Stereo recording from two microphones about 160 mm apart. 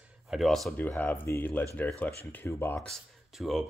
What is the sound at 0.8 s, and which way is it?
Speech, 10° left (ahead or behind).